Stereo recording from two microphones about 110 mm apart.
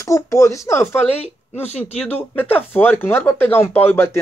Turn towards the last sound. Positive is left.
turn(degrees=20)  # may be behind; listen again after turning